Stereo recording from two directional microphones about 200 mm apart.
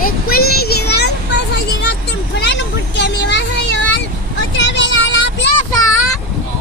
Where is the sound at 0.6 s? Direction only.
50° left (ahead or behind).